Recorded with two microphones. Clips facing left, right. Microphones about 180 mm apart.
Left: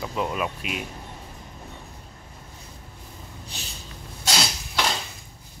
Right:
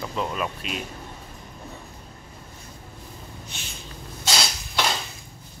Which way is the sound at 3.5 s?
35° left (ahead or behind).